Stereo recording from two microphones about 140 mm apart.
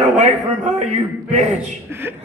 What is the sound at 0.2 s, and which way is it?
Speech, 55° right (ahead or behind).